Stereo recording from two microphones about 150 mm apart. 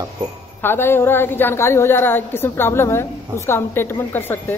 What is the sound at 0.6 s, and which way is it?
A woman's voice, 15° left (ahead or behind).